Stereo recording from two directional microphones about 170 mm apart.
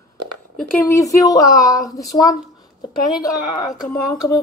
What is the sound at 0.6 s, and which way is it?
A woman's voice, 15° left (ahead or behind).